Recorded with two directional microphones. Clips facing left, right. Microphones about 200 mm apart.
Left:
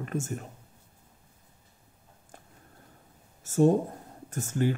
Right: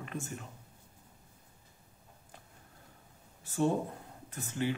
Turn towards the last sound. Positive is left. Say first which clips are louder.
# left 6 dB
turn(degrees=45)  # may be behind; listen again after turning